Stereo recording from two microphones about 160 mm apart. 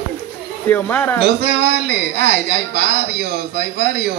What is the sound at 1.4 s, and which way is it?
Speech, 90° right.